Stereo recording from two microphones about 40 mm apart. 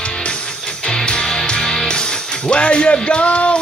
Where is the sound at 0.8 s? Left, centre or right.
Left.